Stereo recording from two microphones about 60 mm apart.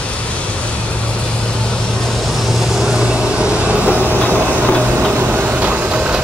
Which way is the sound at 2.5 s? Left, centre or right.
Centre.